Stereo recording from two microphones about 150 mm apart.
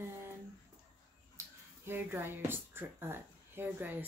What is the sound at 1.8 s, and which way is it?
Speech, 15° right (ahead or behind).